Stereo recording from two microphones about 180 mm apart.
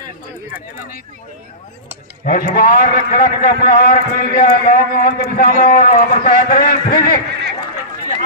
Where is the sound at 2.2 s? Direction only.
55° left (ahead or behind).